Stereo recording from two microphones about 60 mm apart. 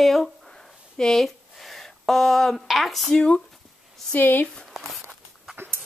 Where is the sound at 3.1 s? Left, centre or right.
Centre.